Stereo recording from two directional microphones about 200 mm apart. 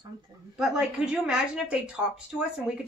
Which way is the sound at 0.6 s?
5° right (ahead or behind).